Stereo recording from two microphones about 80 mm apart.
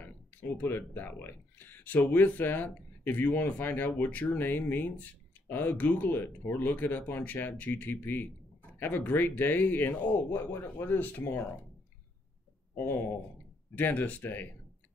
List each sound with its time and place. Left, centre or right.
0.0 s speech: left
13.7 s speech: left